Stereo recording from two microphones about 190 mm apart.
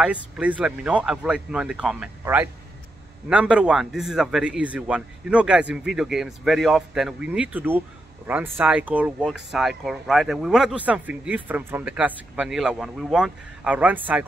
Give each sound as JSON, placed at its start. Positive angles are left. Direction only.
{"t": 0.0, "sound": "speech", "side_deg": -5}